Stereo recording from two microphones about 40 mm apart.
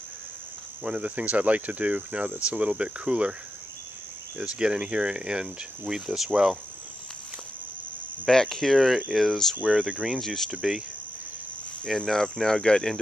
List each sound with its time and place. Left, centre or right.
0.8 s speech: right
4.4 s speech: right
8.3 s speech: centre
9.6 s speech: right
10.1 s speech: centre
10.5 s speech: centre
12.1 s speech: centre